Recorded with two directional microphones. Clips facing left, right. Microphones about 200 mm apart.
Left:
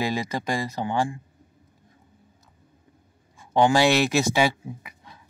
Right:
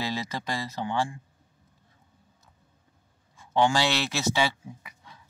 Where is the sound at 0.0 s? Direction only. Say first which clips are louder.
Left 5 dB; 15° left (ahead or behind).